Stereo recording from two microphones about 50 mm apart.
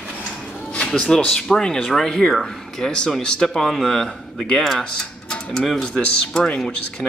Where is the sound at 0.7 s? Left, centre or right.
Left.